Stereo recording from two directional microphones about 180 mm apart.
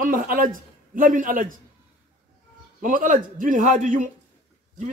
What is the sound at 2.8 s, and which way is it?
A man's voice, 45° right (ahead or behind).